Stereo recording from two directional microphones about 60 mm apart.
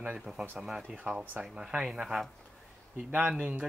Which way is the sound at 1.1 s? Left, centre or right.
Centre.